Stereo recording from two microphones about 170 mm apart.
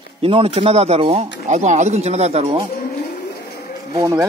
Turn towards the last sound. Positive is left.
turn(degrees=-20)  # may be behind; listen again after turning